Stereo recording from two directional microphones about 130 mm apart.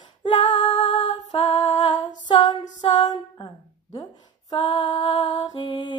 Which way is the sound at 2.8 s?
35° left (ahead or behind).